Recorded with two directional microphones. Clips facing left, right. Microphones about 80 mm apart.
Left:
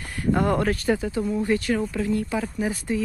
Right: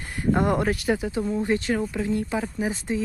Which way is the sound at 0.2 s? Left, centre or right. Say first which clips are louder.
Even; right.